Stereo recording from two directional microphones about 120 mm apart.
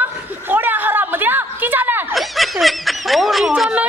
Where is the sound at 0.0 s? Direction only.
15° right (ahead or behind).